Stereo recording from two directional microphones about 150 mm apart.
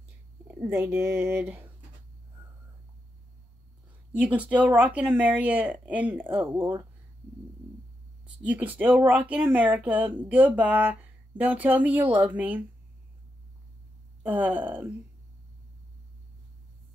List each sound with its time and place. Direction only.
0.5 s speech: 15° right (ahead or behind)
4.2 s speech: 10° right (ahead or behind)
8.5 s speech: 10° right (ahead or behind)
14.2 s speech: 10° right (ahead or behind)